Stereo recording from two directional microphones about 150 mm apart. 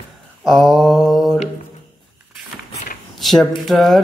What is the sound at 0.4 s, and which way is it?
Mantra, centre (ahead or behind).